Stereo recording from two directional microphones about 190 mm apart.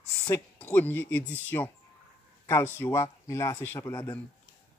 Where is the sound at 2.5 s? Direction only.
15° left (ahead or behind).